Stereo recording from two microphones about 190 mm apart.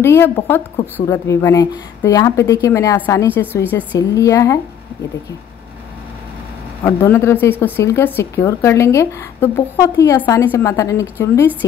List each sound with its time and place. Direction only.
0.0 s speech: 10° left (ahead or behind)
6.8 s speech: 10° left (ahead or behind)